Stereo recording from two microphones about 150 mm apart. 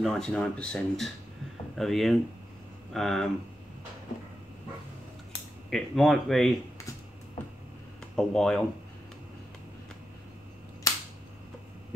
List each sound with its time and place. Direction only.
0.0 s speech: 5° left (ahead or behind)
5.7 s speech: centre (ahead or behind)
8.2 s speech: 5° left (ahead or behind)
10.9 s cap gun: 25° left (ahead or behind)